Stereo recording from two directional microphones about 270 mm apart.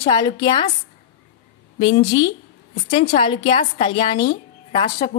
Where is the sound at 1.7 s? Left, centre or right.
Centre.